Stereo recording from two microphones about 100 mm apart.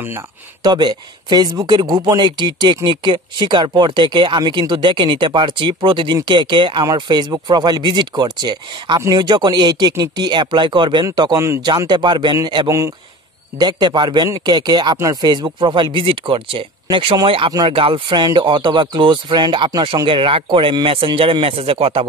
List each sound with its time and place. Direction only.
0.7 s speech: 45° right (ahead or behind)
11.3 s speech: 30° right (ahead or behind)
11.9 s speech: 50° right (ahead or behind)
12.6 s speech: 30° right (ahead or behind)
13.6 s speech: 45° right (ahead or behind); by 16.6 s 65° right (ahead or behind)
16.9 s speech: 50° right (ahead or behind)
17.6 s speech: 65° right (ahead or behind)
18.2 s speech: 50° right (ahead or behind); by 22.0 s 70° right (ahead or behind)